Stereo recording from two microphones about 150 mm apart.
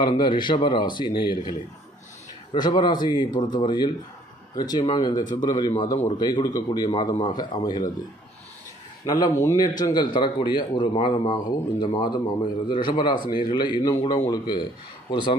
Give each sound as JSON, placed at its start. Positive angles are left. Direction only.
{"t": 0.0, "sound": "a man's voice", "side_deg": 35}
{"t": 2.5, "sound": "a man's voice", "side_deg": 30}
{"t": 9.0, "sound": "a man's voice", "side_deg": 25}